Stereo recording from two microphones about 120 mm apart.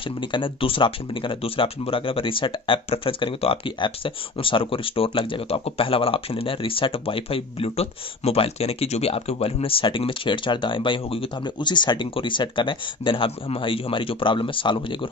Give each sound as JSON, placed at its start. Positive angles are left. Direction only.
{"t": 0.2, "sound": "speech", "side_deg": 45}